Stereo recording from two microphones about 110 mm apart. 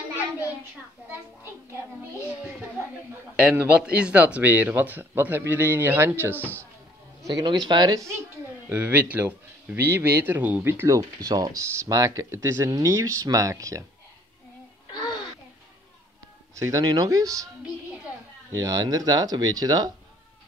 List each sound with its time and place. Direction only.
3.5 s a man's voice: 10° right (ahead or behind)
6.3 s speech: 15° left (ahead or behind)
7.2 s speech: 35° right (ahead or behind)
8.6 s speech: 15° right (ahead or behind)
10.9 s speech: 35° right (ahead or behind)
14.9 s music: 40° left (ahead or behind)
16.5 s speech: 30° right (ahead or behind)
18.5 s speech: 30° right (ahead or behind)